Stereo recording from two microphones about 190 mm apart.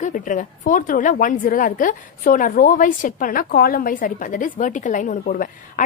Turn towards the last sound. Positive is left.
turn(degrees=45)  # may be behind; listen again after turning